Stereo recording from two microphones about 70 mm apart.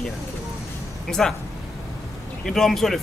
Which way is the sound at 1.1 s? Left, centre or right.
Centre.